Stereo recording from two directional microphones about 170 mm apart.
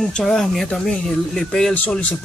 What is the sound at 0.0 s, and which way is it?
Speech, 5° left (ahead or behind).